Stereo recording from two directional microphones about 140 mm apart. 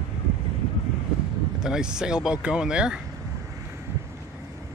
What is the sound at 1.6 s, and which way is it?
Speech, 5° right (ahead or behind).